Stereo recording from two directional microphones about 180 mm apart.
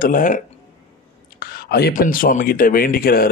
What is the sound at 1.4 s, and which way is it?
Speech, 60° left (ahead or behind).